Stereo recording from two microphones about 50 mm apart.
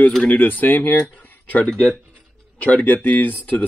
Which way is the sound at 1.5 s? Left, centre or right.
Left.